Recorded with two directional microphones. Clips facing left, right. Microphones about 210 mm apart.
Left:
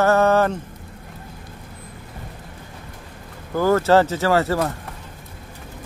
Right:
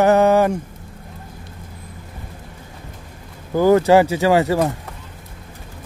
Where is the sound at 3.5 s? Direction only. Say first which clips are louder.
Right 4 dB; 15° right (ahead or behind).